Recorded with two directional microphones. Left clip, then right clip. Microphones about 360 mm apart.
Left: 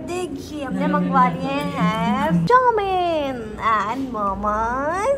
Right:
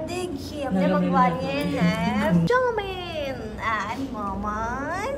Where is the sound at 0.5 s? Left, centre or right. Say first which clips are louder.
Left 1 dB; centre.